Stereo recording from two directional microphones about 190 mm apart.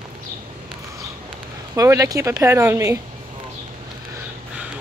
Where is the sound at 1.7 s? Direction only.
15° right (ahead or behind).